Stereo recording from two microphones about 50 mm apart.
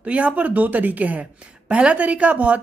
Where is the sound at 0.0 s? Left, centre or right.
Right.